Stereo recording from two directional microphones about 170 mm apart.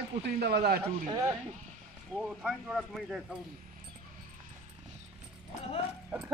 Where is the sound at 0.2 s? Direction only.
70° right (ahead or behind).